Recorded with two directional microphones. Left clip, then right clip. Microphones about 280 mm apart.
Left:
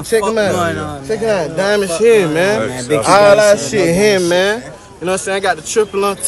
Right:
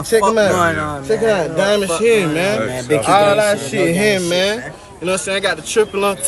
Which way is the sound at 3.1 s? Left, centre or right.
Left.